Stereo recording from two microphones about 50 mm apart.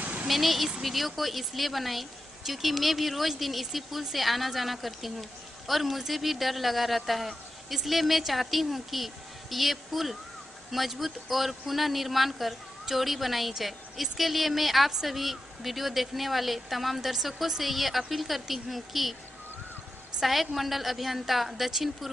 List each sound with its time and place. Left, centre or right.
0.0 s a sound: right
0.3 s speech: centre
20.2 s speech: centre